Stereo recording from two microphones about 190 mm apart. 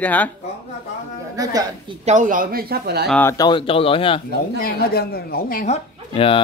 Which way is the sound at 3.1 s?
15° left (ahead or behind).